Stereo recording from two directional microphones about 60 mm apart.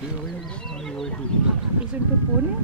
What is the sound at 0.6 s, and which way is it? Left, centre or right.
Speech, centre.